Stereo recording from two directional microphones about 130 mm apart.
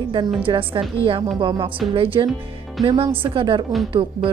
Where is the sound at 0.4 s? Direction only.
45° right (ahead or behind).